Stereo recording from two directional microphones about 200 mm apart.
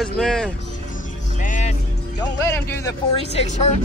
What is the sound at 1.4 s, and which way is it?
Music, 40° left (ahead or behind).